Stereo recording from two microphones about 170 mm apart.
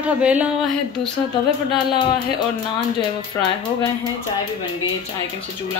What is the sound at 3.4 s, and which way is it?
Speech, 15° left (ahead or behind).